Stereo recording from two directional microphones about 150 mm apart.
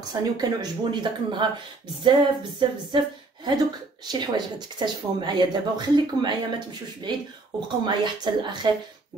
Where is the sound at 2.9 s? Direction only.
30° right (ahead or behind).